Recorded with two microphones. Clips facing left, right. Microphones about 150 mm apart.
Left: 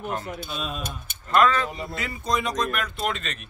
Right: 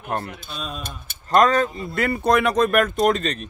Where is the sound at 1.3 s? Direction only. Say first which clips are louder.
Right 4 dB; 40° right (ahead or behind).